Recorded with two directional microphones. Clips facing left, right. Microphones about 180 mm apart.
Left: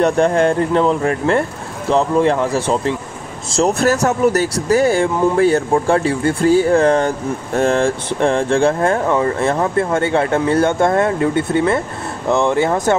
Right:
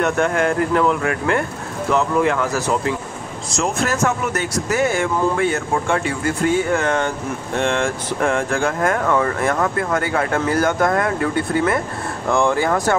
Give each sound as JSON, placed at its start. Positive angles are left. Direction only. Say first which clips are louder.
{"t": 0.0, "sound": "speech", "louder": "left 5 dB", "side_deg": 30}